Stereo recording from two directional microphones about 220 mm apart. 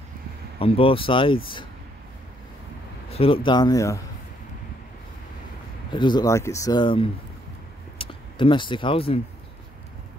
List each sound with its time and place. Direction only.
0.6 s speech: 25° left (ahead or behind)
3.1 s speech: 25° left (ahead or behind)
5.9 s speech: 20° left (ahead or behind)